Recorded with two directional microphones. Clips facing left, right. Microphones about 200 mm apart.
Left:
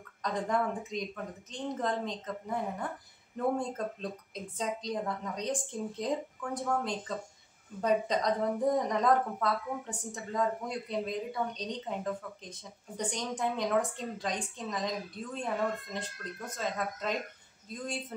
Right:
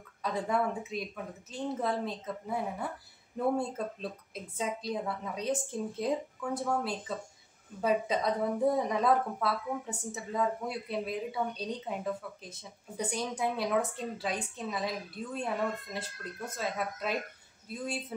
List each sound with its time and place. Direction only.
0.2 s a woman's voice: 5° right (ahead or behind)